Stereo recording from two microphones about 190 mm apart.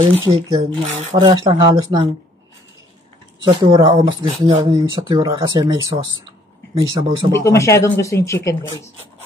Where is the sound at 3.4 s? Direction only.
25° right (ahead or behind).